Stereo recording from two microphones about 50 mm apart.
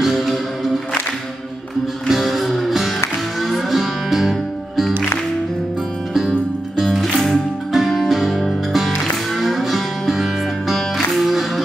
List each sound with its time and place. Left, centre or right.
0.0 s music: centre
2.0 s music: centre
6.9 s music: centre
9.4 s music: centre